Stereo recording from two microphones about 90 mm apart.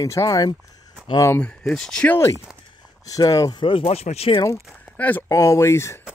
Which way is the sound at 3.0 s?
40° left (ahead or behind).